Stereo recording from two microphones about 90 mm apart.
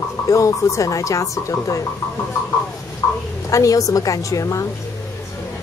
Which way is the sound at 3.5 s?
40° left (ahead or behind).